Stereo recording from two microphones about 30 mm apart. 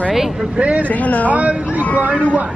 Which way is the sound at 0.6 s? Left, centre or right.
Right.